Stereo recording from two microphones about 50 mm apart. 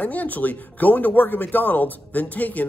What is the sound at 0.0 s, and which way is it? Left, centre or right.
Speech, left.